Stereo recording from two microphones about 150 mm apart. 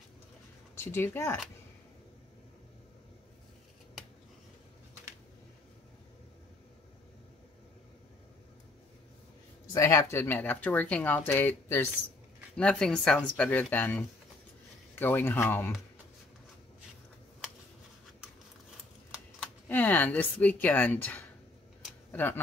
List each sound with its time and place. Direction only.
0.7 s speech: 15° left (ahead or behind)
9.7 s speech: 20° left (ahead or behind)
19.7 s speech: 10° left (ahead or behind)